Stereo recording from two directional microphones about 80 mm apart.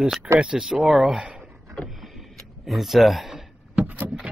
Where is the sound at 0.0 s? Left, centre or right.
Centre.